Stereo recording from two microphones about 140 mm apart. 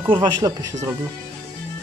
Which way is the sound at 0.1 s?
30° right (ahead or behind).